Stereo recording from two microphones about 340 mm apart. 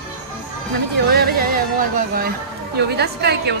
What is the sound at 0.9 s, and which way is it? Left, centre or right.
Speech, right.